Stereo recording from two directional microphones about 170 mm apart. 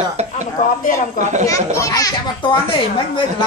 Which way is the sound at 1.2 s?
45° right (ahead or behind).